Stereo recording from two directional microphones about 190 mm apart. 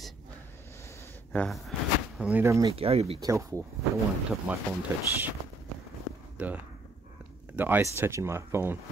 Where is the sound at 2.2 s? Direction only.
10° right (ahead or behind).